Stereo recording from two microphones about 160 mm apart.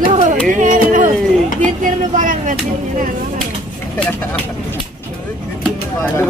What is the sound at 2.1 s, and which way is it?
Speech, 55° right (ahead or behind).